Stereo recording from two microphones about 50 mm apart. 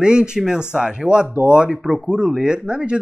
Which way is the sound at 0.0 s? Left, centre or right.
Centre.